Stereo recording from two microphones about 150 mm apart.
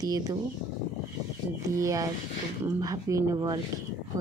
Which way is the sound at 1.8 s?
20° right (ahead or behind).